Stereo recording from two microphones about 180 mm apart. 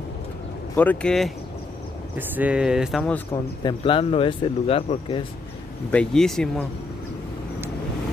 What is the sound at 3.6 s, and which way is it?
Speech, 30° left (ahead or behind).